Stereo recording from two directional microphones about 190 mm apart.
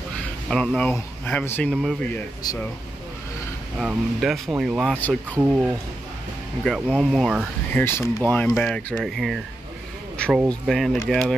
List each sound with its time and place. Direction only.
0.5 s speech: centre (ahead or behind)
1.7 s speech: centre (ahead or behind)
2.4 s speech: 20° left (ahead or behind)
3.7 s speech: centre (ahead or behind)
7.7 s speech: 10° left (ahead or behind)
10.1 s a sound: 5° left (ahead or behind)
10.5 s speech: centre (ahead or behind)